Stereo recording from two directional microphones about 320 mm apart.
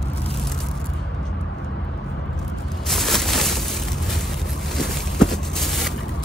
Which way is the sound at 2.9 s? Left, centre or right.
Centre.